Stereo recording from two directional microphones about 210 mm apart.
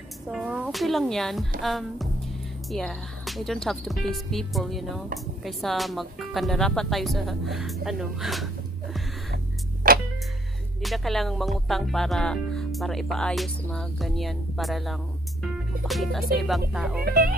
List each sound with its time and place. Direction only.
0.3 s speech: 5° right (ahead or behind)
9.8 s music: 40° right (ahead or behind)
10.8 s speech: centre (ahead or behind)
17.0 s speech: 50° right (ahead or behind)